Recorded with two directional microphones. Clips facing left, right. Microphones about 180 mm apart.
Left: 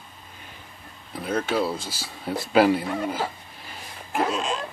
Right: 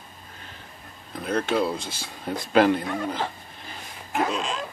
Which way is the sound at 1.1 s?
5° left (ahead or behind).